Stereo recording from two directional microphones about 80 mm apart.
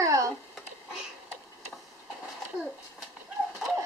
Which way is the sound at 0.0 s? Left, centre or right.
Right.